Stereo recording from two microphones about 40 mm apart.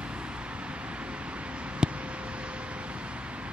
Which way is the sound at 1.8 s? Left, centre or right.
Right.